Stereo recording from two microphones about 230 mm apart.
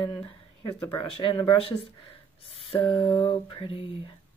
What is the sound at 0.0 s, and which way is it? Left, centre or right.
Speech, left.